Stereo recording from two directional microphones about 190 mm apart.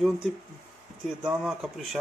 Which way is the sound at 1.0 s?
5° right (ahead or behind).